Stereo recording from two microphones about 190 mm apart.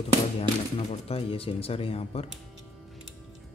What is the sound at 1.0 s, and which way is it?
Speech, 30° left (ahead or behind).